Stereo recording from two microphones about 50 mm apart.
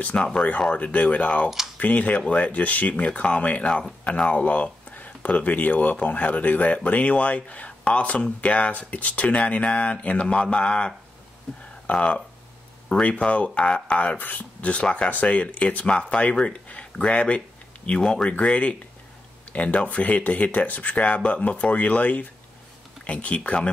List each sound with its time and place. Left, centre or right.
0.0 s speech: left